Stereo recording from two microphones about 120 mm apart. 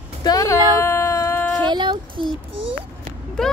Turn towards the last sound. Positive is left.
turn(degrees=5)  # may be behind; listen again after turning